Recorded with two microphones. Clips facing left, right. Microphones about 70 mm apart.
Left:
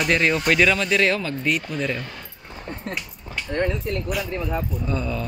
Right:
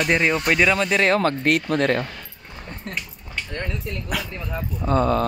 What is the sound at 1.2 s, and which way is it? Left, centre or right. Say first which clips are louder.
Speech: right 5 dB; right.